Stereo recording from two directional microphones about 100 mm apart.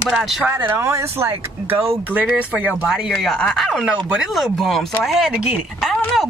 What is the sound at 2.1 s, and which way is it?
Speech, 15° right (ahead or behind).